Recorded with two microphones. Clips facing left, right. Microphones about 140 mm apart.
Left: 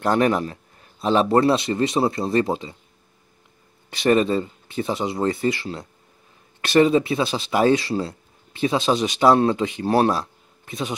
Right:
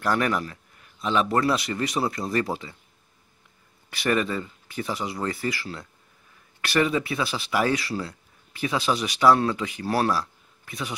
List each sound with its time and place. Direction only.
0.0 s speech: 25° left (ahead or behind)
3.9 s speech: 25° left (ahead or behind)